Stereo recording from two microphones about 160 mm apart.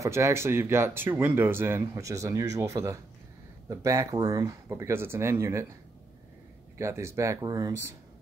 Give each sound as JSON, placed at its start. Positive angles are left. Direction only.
{"t": 0.0, "sound": "speech", "side_deg": -20}
{"t": 6.8, "sound": "speech", "side_deg": -15}